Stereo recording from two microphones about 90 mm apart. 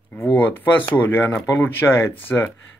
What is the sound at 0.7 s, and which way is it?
Speech, 20° left (ahead or behind).